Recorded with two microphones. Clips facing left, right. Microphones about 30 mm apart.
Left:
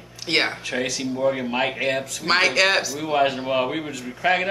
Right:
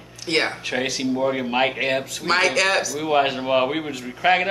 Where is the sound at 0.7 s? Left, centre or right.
Centre.